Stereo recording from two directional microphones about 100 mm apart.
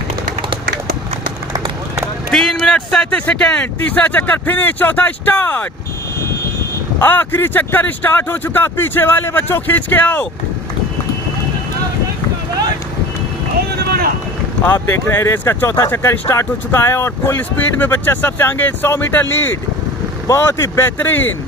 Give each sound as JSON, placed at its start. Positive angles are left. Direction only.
{"t": 2.3, "sound": "a man's voice", "side_deg": 5}
{"t": 7.0, "sound": "speech", "side_deg": 20}
{"t": 14.6, "sound": "speech", "side_deg": 20}